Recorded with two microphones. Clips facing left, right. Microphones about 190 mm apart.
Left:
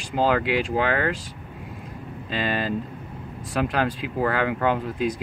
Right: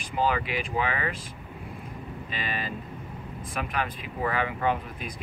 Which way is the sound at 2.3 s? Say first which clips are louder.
Left 9 dB; 90° left.